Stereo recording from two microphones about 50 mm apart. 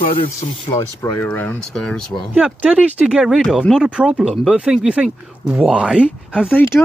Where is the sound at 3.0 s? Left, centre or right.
Centre.